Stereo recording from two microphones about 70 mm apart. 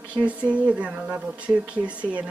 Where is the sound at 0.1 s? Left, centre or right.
Centre.